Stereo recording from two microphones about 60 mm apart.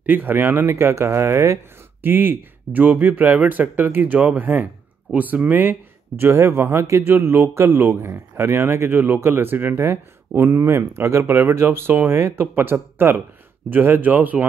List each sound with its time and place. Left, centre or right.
0.0 s speech: right
2.0 s speech: right
6.3 s speech: right
8.9 s speech: right